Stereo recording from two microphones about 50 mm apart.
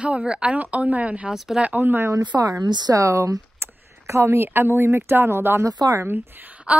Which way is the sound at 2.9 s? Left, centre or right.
Right.